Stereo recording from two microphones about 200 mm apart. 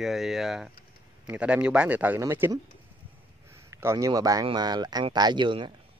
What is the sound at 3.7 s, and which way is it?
Speech, 15° right (ahead or behind).